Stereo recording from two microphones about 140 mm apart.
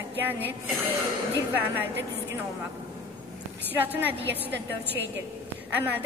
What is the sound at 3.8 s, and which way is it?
Speech, 15° right (ahead or behind).